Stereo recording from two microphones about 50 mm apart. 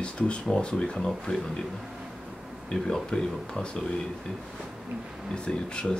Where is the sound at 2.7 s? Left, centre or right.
Centre.